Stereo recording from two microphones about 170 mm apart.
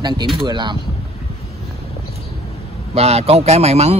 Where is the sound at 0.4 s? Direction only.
25° right (ahead or behind).